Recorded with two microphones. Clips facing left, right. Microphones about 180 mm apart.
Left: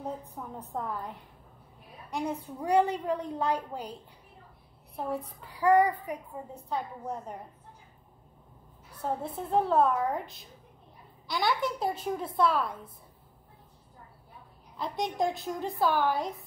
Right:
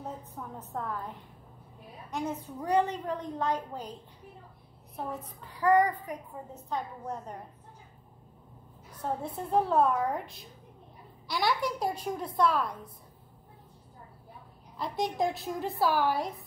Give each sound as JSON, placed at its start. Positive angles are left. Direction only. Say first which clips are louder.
{"t": 0.4, "sound": "a woman's voice", "louder": "left 1 dB", "side_deg": 10}
{"t": 4.9, "sound": "a woman's voice", "louder": "left 4 dB", "side_deg": 35}
{"t": 5.6, "sound": "a woman's voice", "louder": "left 1 dB", "side_deg": 10}
{"t": 9.0, "sound": "a woman's voice", "louder": "left 1 dB", "side_deg": 0}
{"t": 14.8, "sound": "a woman's voice", "louder": "even", "side_deg": 0}